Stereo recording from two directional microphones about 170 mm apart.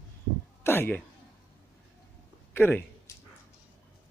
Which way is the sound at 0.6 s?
10° left (ahead or behind).